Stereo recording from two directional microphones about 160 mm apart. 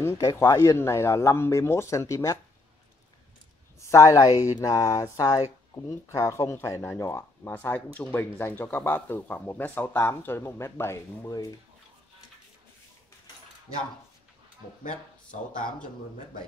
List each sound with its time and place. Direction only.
0.0 s speech: 20° left (ahead or behind)
3.8 s a sound: 20° left (ahead or behind)
5.9 s speech: 20° left (ahead or behind)